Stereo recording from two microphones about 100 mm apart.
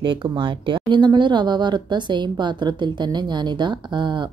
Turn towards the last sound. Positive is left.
turn(degrees=-50)  # may be behind; listen again after turning